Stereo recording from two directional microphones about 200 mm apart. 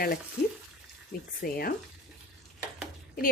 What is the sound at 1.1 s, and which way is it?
Speech, 50° left (ahead or behind).